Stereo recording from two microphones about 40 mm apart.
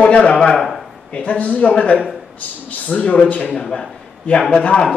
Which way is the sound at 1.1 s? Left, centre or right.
Left.